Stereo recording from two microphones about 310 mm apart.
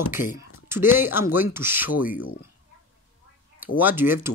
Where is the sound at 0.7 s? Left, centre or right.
Centre.